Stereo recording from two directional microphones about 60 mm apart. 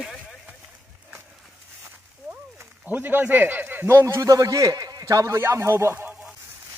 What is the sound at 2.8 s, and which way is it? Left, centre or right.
Speech, right.